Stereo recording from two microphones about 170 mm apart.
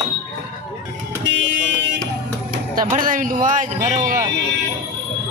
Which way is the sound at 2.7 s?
55° right (ahead or behind).